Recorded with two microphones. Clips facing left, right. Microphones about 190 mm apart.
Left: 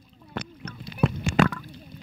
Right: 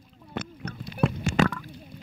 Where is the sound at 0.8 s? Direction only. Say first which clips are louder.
Left 1 dB; centre (ahead or behind).